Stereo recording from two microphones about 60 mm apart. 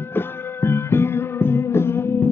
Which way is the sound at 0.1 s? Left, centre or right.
Left.